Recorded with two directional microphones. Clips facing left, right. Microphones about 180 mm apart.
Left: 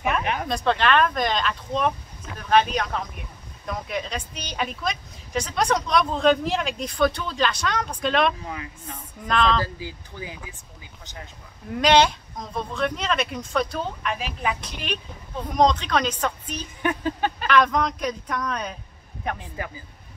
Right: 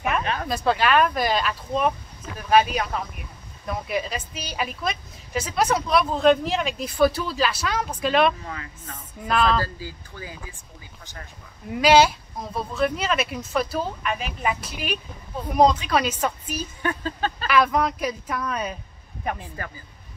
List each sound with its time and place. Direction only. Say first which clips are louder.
0.2 s a sound: even; 15° left (ahead or behind)
0.5 s speech: even; 5° right (ahead or behind)
8.5 s speech: left 2 dB; 15° left (ahead or behind)
9.2 s speech: even; 5° right (ahead or behind)
9.8 s speech: left 1 dB; 20° left (ahead or behind)
11.7 s speech: right 2 dB; 5° right (ahead or behind)
16.8 s speech: left 3 dB; 15° left (ahead or behind)
17.5 s speech: even; 5° right (ahead or behind)